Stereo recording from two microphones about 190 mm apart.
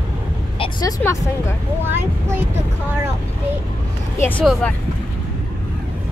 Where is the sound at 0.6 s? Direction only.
20° left (ahead or behind).